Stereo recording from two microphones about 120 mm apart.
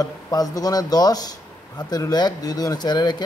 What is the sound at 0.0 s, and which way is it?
Speech, 30° left (ahead or behind).